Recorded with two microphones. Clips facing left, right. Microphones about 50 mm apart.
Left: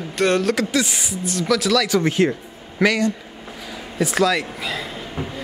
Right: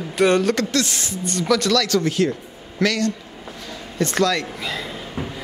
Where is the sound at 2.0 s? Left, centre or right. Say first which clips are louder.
Left 2 dB; left.